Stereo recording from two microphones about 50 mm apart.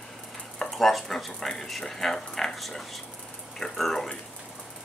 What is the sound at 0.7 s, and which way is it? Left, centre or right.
Speech, centre.